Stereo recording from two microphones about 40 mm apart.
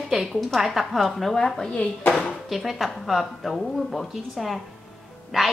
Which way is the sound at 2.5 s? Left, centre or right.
Centre.